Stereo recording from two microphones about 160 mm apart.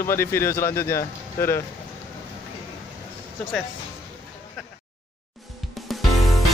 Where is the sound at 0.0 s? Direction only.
15° left (ahead or behind).